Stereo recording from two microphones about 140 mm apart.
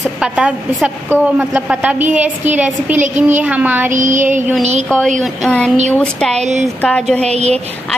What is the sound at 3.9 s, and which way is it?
Child singing, 65° right (ahead or behind).